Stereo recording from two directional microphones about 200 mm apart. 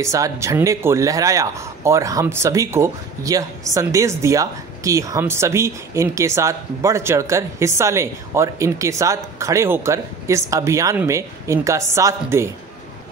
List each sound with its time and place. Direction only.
0.0 s a man's voice: 15° right (ahead or behind)